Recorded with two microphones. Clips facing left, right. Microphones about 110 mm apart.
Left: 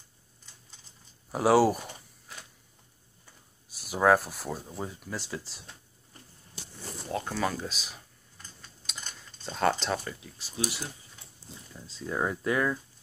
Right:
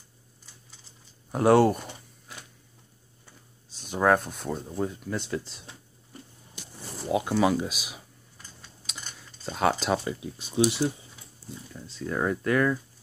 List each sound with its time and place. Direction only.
1.3 s speech: centre (ahead or behind)
3.7 s speech: 5° left (ahead or behind)
7.1 s computer keyboard: 10° right (ahead or behind)
10.0 s speech: 20° right (ahead or behind)
11.7 s speech: 5° left (ahead or behind)